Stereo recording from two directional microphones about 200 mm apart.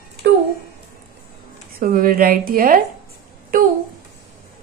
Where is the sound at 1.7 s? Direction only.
45° right (ahead or behind).